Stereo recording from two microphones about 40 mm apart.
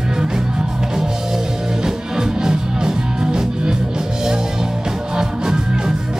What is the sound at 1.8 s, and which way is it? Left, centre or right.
Music, centre.